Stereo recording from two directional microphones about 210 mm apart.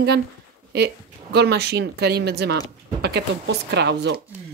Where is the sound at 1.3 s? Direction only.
50° right (ahead or behind).